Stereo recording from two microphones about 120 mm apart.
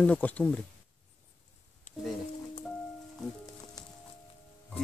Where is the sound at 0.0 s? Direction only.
10° left (ahead or behind).